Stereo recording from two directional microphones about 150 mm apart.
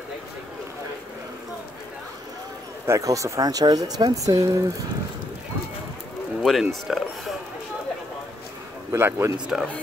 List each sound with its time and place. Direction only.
2.9 s speech: 20° right (ahead or behind)
6.4 s speech: centre (ahead or behind)
8.9 s speech: 15° right (ahead or behind)
9.5 s speech: 5° right (ahead or behind)